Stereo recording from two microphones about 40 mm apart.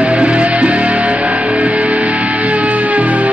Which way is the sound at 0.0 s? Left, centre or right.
Right.